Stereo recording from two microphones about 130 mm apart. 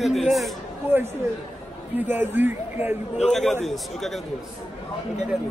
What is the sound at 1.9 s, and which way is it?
A man's voice, 15° right (ahead or behind).